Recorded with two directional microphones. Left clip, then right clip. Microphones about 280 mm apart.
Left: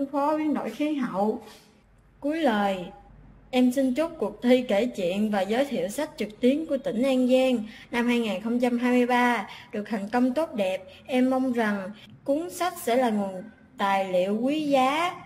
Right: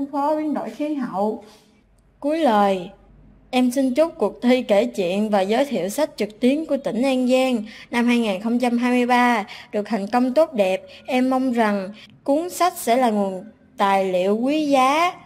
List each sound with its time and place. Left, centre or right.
0.1 s speech: right
2.2 s a woman's voice: right